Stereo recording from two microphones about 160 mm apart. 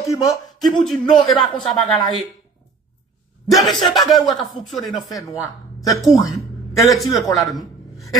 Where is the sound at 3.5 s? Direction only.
Centre (ahead or behind).